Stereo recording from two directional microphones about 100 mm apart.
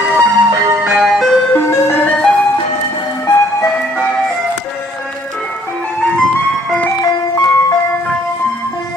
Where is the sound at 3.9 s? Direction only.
10° left (ahead or behind).